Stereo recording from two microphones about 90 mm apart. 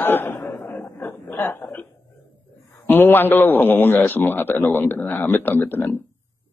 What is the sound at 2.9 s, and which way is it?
Speech, 20° left (ahead or behind).